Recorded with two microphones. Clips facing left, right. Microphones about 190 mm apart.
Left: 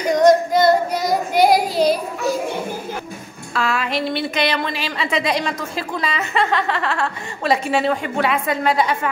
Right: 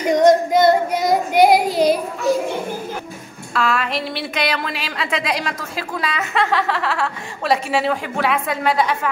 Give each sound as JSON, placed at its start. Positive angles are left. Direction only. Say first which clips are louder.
{"t": 0.1, "sound": "child singing", "louder": "even", "side_deg": -20}
{"t": 3.5, "sound": "a woman's voice", "louder": "right 1 dB", "side_deg": 0}